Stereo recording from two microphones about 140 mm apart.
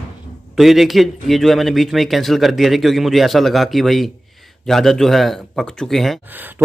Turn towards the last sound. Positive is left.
turn(degrees=-15)  # may be behind; listen again after turning